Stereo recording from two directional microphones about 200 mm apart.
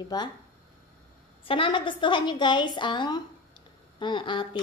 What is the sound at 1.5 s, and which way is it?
A woman's voice, 25° left (ahead or behind).